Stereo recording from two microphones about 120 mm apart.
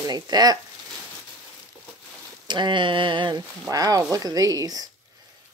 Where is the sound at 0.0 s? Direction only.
35° right (ahead or behind).